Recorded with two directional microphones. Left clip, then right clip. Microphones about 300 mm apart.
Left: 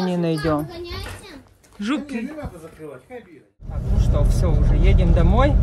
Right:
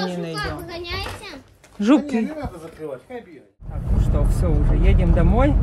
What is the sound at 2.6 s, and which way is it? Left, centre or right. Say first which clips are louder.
Speech: right 5 dB; right.